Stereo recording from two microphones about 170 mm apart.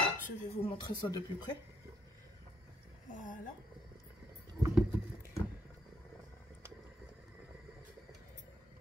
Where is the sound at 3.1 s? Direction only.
50° left (ahead or behind).